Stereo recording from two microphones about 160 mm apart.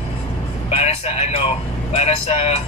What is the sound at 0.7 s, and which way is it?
A man's voice, 40° left (ahead or behind).